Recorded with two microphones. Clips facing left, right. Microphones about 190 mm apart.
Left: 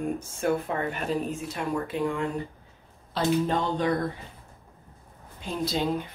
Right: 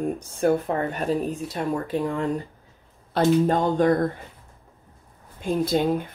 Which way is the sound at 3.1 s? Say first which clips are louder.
Right 5 dB; 50° right (ahead or behind).